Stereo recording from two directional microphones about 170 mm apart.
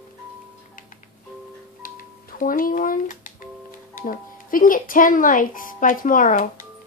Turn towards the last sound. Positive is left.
turn(degrees=50)  # may be behind; listen again after turning